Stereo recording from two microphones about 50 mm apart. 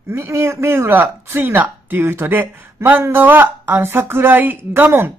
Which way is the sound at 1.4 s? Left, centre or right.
Right.